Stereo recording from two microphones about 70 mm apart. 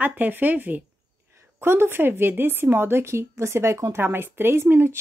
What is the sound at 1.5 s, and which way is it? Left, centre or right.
Speech, right.